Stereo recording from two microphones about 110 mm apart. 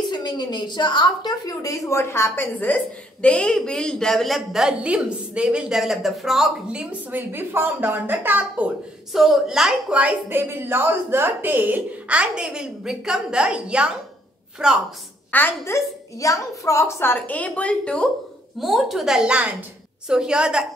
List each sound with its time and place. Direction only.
0.1 s a woman's voice: 40° left (ahead or behind); by 8.7 s 15° right (ahead or behind)
9.1 s a woman's voice: centre (ahead or behind)
15.3 s a woman's voice: 20° left (ahead or behind)
18.6 s a woman's voice: centre (ahead or behind)